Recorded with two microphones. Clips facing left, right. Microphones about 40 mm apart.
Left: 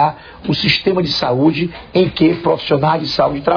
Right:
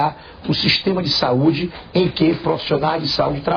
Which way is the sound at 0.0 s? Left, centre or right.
Centre.